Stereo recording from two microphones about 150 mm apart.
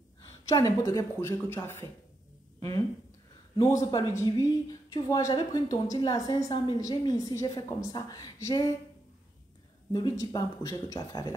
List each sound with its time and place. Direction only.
0.5 s a woman's voice: 25° left (ahead or behind)
3.5 s speech: 30° left (ahead or behind)
9.9 s speech: 30° left (ahead or behind)